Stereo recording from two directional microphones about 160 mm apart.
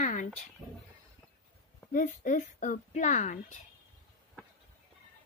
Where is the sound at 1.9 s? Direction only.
55° left (ahead or behind).